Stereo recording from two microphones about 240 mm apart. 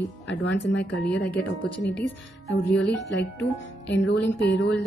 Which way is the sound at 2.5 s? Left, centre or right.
Left.